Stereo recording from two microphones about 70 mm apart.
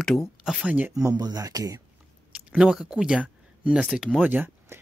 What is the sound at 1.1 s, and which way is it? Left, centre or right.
Speech, right.